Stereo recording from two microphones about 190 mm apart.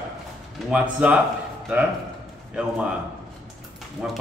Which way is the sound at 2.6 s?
5° right (ahead or behind).